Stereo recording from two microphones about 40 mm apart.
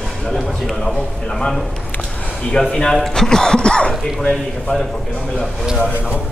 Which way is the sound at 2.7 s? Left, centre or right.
Centre.